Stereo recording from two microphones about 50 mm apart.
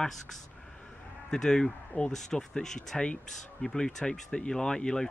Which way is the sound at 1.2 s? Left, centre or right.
Centre.